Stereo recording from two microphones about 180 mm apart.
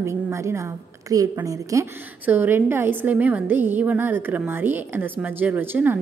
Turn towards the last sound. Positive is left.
turn(degrees=-10)  # may be behind; listen again after turning